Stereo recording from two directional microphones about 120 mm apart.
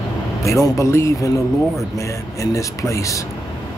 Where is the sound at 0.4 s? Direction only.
25° left (ahead or behind).